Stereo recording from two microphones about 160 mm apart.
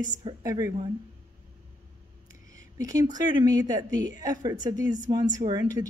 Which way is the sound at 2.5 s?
20° right (ahead or behind).